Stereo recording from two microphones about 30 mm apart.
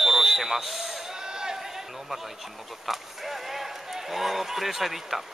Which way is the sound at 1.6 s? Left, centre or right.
Centre.